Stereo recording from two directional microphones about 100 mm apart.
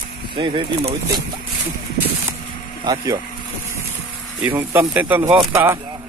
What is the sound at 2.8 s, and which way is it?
Speech, 40° right (ahead or behind).